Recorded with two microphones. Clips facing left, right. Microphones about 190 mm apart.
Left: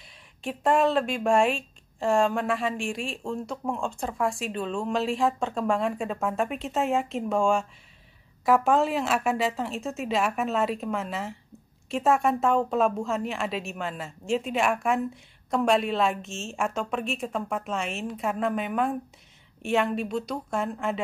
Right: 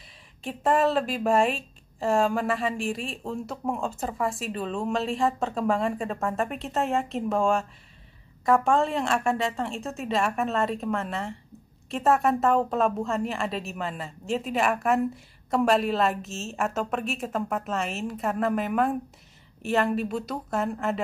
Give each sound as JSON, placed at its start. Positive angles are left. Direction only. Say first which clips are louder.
{"t": 0.4, "sound": "a woman's voice", "louder": "even", "side_deg": 0}